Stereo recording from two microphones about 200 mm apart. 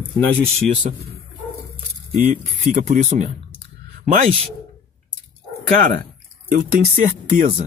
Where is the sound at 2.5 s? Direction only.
35° right (ahead or behind).